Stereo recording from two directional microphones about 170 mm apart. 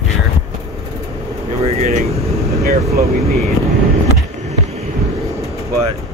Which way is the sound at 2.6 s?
65° right (ahead or behind).